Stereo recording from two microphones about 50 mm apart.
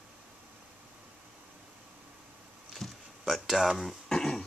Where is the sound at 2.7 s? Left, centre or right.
Centre.